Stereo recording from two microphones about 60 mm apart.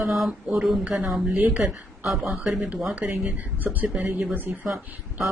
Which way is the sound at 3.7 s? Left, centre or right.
Right.